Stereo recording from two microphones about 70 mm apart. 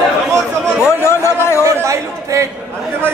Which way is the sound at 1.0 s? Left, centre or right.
Left.